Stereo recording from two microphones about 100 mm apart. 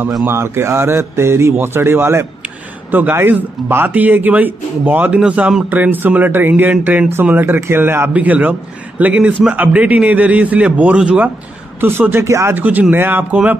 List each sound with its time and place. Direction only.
0.2 s speech: 25° right (ahead or behind); by 5.7 s 10° right (ahead or behind)
5.7 s speech: 20° right (ahead or behind)
12.5 s speech: 15° right (ahead or behind)